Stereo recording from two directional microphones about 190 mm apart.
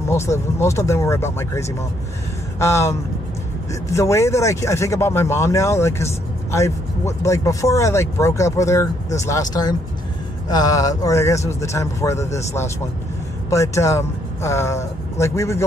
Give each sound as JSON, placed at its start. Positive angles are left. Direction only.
{"t": 0.1, "sound": "speech", "side_deg": 15}
{"t": 13.5, "sound": "speech", "side_deg": 15}